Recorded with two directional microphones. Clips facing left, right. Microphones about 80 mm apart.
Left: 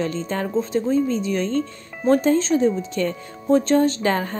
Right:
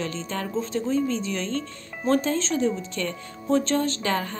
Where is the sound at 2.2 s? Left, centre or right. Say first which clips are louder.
Left 6 dB; left.